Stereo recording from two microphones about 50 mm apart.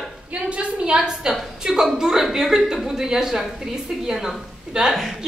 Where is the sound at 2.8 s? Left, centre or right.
Centre.